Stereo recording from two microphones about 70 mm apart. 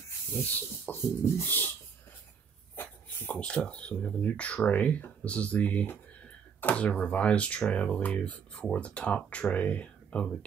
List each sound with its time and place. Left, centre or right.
0.3 s speech: left
2.7 s a sound: left
3.3 s speech: centre